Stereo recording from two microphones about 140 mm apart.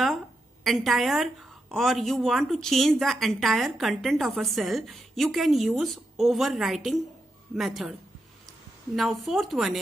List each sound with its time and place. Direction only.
0.7 s a woman's voice: centre (ahead or behind)
8.9 s a woman's voice: centre (ahead or behind)